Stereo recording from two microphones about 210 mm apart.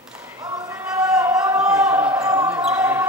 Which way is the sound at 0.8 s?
5° right (ahead or behind).